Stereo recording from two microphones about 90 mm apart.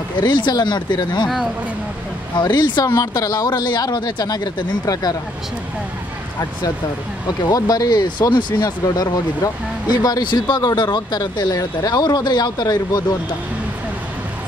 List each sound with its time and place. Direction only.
0.2 s speech: 55° left (ahead or behind)
2.5 s speech: 55° left (ahead or behind)
7.2 s speech: 45° left (ahead or behind)